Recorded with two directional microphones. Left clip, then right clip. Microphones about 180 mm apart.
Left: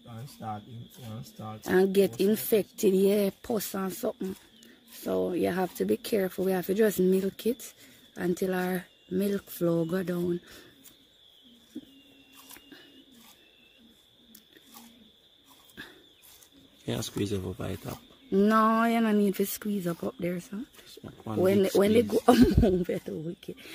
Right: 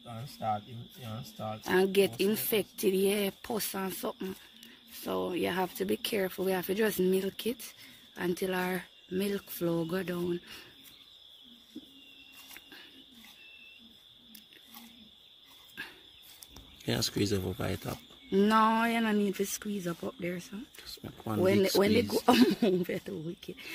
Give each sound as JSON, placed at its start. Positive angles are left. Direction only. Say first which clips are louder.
{"t": 1.7, "sound": "speech", "louder": "left 3 dB", "side_deg": 50}
{"t": 11.7, "sound": "a sound", "louder": "left 5 dB", "side_deg": 30}
{"t": 16.8, "sound": "speech", "louder": "right 1 dB", "side_deg": 0}
{"t": 18.3, "sound": "speech", "louder": "left 2 dB", "side_deg": 30}
{"t": 21.0, "sound": "speech", "louder": "even", "side_deg": 0}
{"t": 21.4, "sound": "speech", "louder": "left 2 dB", "side_deg": 40}
{"t": 22.0, "sound": "speech", "louder": "left 3 dB", "side_deg": 30}